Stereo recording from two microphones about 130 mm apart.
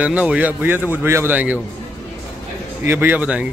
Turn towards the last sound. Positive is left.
turn(degrees=-10)  # may be behind; listen again after turning